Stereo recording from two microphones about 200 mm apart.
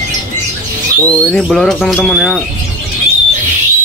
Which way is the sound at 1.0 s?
5° left (ahead or behind).